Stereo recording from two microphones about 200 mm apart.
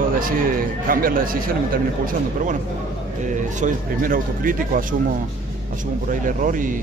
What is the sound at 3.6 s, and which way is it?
Speech, 45° right (ahead or behind).